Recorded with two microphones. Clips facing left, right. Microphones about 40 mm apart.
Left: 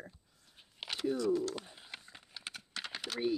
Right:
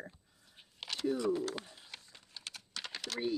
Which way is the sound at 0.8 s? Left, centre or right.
Centre.